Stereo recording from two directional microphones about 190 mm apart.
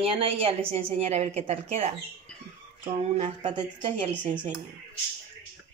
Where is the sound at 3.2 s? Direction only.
25° right (ahead or behind).